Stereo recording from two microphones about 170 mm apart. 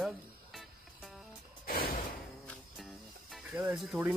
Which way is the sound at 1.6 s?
60° left (ahead or behind).